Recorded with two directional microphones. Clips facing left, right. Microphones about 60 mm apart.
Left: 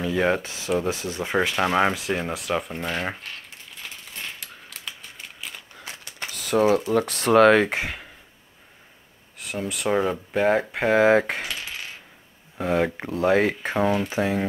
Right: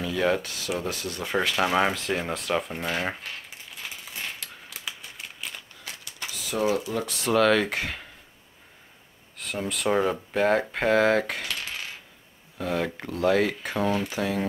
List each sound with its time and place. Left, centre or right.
0.0 s speech: left
1.6 s speech: centre
3.8 s coin: centre
6.3 s typewriter: left
6.9 s speech: left
7.6 s speech: centre
9.4 s speech: centre; by 11.4 s left
12.5 s speech: left